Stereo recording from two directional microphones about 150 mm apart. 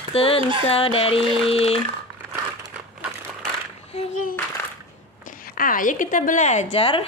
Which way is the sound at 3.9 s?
60° left (ahead or behind).